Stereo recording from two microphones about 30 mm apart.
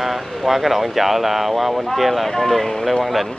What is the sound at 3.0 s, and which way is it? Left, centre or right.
Speech, centre.